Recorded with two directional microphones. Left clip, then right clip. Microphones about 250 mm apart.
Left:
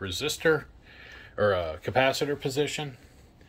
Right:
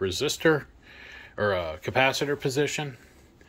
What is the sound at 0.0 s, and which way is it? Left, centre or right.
Speech, centre.